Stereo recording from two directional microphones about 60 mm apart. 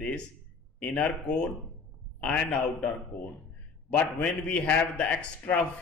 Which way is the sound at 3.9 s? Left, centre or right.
Left.